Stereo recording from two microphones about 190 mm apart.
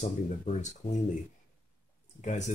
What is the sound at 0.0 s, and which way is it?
Speech, 40° left (ahead or behind).